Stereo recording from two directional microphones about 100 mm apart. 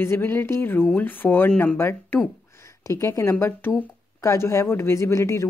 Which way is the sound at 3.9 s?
30° left (ahead or behind).